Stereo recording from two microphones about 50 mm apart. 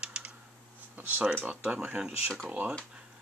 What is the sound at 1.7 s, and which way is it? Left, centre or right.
Speech, right.